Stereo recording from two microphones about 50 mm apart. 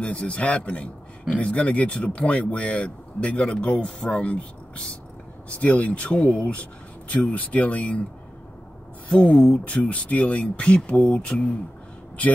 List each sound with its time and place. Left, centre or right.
0.0 s speech: left
9.3 s speech: centre
9.7 s speech: left